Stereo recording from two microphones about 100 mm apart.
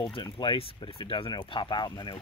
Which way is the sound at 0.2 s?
55° left (ahead or behind).